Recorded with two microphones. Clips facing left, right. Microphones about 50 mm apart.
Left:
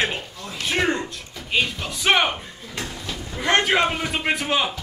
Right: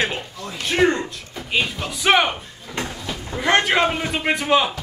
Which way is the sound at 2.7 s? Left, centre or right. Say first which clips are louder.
Right 4 dB; right.